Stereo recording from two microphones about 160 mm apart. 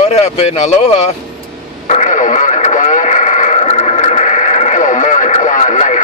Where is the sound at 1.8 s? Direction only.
50° left (ahead or behind).